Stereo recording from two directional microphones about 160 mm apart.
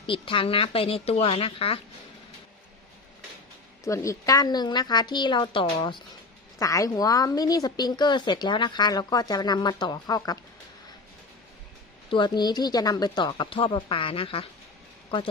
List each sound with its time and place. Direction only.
0.0 s speech: 35° left (ahead or behind)
3.8 s speech: 20° left (ahead or behind)
6.6 s speech: 20° left (ahead or behind)
12.1 s speech: 30° left (ahead or behind)